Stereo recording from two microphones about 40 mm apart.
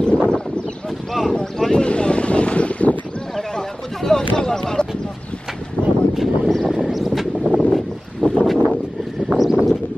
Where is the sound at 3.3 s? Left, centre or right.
Centre.